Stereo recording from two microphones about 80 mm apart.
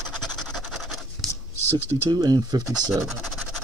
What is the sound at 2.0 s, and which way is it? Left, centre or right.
Speech, right.